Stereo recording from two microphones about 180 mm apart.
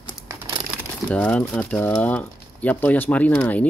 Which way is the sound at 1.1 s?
5° left (ahead or behind).